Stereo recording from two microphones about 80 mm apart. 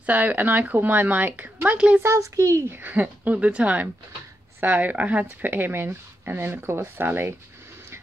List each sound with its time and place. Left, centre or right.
0.0 s speech: right
2.0 s a child's voice: right
2.8 s speech: right